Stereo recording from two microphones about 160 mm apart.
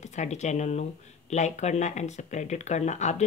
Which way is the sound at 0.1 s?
45° left (ahead or behind).